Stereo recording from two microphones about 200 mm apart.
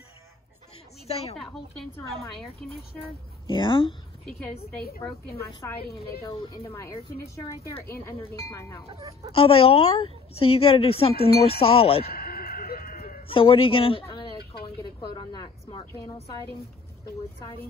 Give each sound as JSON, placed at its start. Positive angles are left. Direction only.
{"t": 1.0, "sound": "a woman's voice", "side_deg": 30}
{"t": 3.4, "sound": "a man's voice", "side_deg": 25}
{"t": 5.5, "sound": "speech", "side_deg": 15}
{"t": 9.3, "sound": "a man's voice", "side_deg": 30}
{"t": 11.1, "sound": "a sound", "side_deg": 50}
{"t": 11.4, "sound": "a man's voice", "side_deg": 30}
{"t": 12.1, "sound": "a sound", "side_deg": 50}
{"t": 13.3, "sound": "a man's voice", "side_deg": 25}